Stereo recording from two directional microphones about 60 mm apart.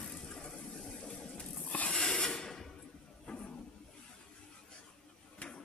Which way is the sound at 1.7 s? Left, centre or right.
Left.